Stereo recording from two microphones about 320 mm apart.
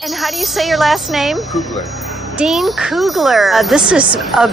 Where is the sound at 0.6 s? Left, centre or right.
Centre.